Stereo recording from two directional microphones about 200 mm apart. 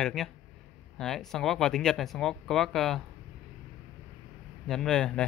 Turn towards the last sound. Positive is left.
turn(degrees=5)  # may be behind; listen again after turning